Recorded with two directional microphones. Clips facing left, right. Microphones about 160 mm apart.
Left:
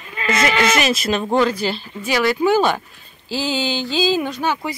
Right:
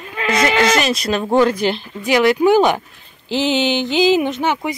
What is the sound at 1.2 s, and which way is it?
Speech, 10° right (ahead or behind).